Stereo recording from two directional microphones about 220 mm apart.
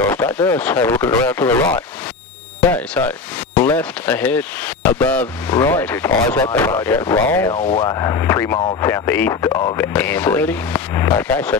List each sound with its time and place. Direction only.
0.0 s speech: 10° left (ahead or behind)
7.5 s speech: 30° left (ahead or behind)
7.9 s speech: 15° left (ahead or behind)
9.8 s speech: 10° left (ahead or behind)